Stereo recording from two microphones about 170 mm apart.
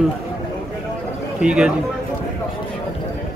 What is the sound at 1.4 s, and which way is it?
Speech, 5° right (ahead or behind).